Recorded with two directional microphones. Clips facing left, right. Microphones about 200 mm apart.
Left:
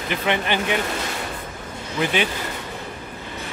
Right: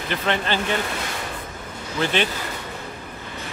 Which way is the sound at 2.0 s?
10° left (ahead or behind).